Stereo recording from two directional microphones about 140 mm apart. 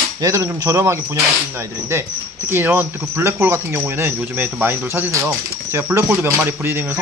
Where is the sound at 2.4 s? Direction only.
15° right (ahead or behind).